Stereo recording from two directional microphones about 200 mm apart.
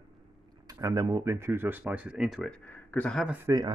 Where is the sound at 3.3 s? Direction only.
15° right (ahead or behind).